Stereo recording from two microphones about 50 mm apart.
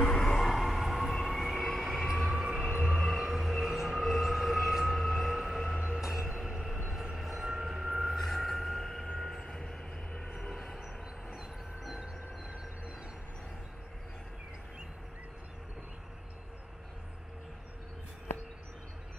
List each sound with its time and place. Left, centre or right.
0.1 s train: centre
1.6 s vehicle: centre
2.4 s train: centre
2.7 s train: right
3.3 s train: centre
5.9 s train: centre
7.2 s a sound: centre
10.5 s train: centre
11.2 s train: centre